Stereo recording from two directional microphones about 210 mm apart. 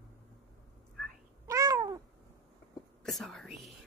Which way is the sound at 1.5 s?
15° right (ahead or behind).